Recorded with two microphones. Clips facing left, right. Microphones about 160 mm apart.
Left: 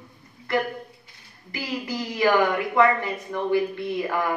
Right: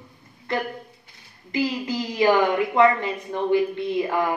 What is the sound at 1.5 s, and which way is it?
Speech, 20° right (ahead or behind).